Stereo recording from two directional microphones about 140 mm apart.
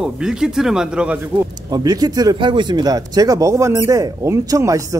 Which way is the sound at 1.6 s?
30° right (ahead or behind).